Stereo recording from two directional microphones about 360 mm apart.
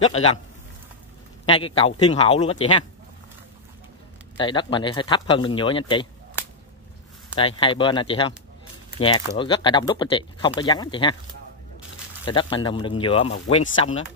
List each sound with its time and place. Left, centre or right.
1.4 s speech: centre
4.4 s speech: centre
12.3 s speech: centre